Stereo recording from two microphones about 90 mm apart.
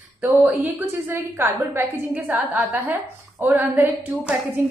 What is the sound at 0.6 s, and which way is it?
A woman's voice, 20° right (ahead or behind).